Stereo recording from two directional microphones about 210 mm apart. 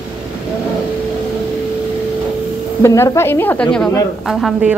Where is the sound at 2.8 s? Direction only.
15° left (ahead or behind).